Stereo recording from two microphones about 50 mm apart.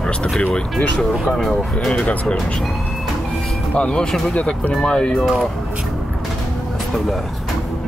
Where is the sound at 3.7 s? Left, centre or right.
Left.